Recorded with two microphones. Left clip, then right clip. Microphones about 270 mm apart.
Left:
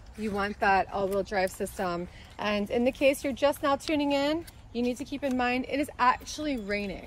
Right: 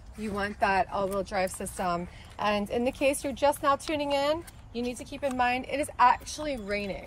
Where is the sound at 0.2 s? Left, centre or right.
Right.